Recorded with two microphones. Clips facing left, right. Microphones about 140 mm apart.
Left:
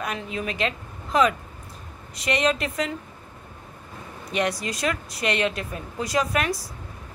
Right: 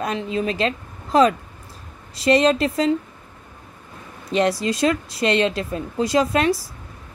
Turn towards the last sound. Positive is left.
turn(degrees=-30)  # may be behind; listen again after turning